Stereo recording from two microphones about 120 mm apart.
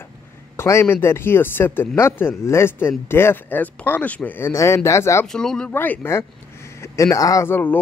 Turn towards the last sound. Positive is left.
turn(degrees=15)  # may be behind; listen again after turning